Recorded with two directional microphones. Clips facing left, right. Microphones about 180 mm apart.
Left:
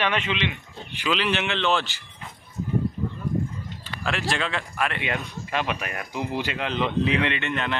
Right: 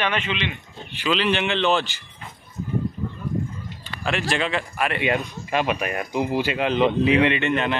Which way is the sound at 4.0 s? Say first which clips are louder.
Right 3 dB; centre (ahead or behind).